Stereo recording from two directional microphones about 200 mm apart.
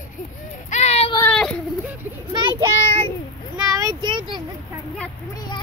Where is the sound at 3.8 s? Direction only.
20° right (ahead or behind).